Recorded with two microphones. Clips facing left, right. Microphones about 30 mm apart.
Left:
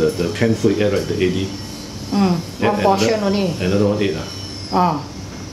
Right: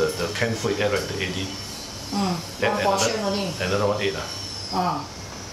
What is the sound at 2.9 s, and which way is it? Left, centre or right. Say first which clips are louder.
Speech: left 6 dB; centre.